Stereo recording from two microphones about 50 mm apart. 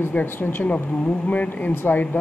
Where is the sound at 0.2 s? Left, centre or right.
Left.